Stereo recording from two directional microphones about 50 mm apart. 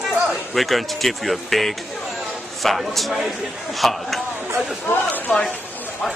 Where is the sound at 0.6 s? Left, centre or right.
Centre.